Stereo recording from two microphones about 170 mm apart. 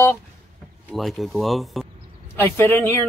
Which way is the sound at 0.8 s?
Centre (ahead or behind).